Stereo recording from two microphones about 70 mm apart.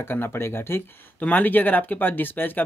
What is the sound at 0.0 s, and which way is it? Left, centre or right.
Speech, left.